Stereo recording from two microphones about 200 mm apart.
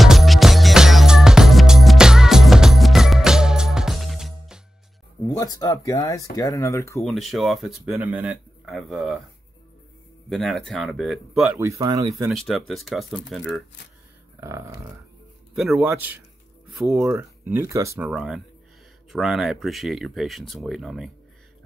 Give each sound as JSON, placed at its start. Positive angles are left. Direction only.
{"t": 0.0, "sound": "music", "side_deg": 0}
{"t": 5.3, "sound": "speech", "side_deg": 20}
{"t": 7.0, "sound": "speech", "side_deg": 0}
{"t": 10.3, "sound": "speech", "side_deg": 0}
{"t": 11.6, "sound": "speech", "side_deg": -15}
{"t": 12.3, "sound": "speech", "side_deg": 0}
{"t": 14.4, "sound": "a sound", "side_deg": -15}
{"t": 15.5, "sound": "speech", "side_deg": -5}
{"t": 18.0, "sound": "speech", "side_deg": -5}